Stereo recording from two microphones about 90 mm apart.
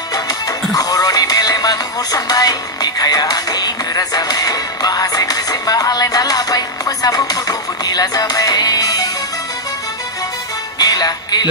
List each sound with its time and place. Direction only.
0.1 s music: 45° left (ahead or behind)
10.8 s music: 45° left (ahead or behind)